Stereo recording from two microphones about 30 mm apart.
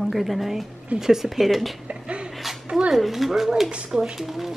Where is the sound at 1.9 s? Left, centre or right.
Right.